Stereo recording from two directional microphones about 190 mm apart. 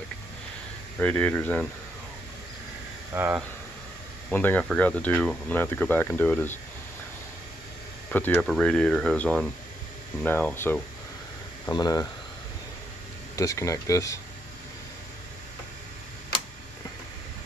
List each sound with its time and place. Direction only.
0.9 s speech: 10° left (ahead or behind)
3.2 s speech: 10° right (ahead or behind)
4.3 s speech: 10° left (ahead or behind)
8.1 s speech: 10° left (ahead or behind)
13.4 s speech: 15° left (ahead or behind)